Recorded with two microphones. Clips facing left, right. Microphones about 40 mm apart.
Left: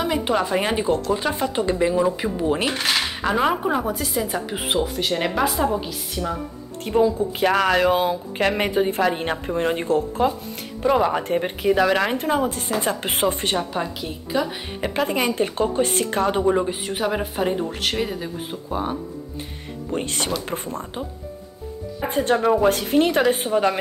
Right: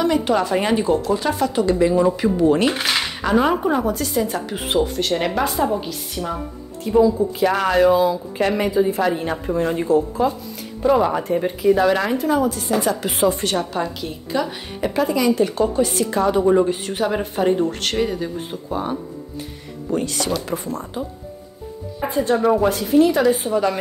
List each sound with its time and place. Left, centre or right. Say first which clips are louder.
0.0 s a woman's voice: right 3 dB; centre
1.1 s a woman's voice: right 3 dB; left
2.7 s cutlery: right 1 dB; centre
3.6 s speech: right 3 dB; centre
6.8 s a woman's voice: right 3 dB; left
11.9 s a woman's voice: right 2 dB; left
13.8 s a woman's voice: right 2 dB; centre
14.8 s a woman's voice: right 3 dB; left
16.4 s speech: right 4 dB; centre
19.9 s a woman's voice: right 3 dB; left
22.1 s a woman's voice: right 1 dB; left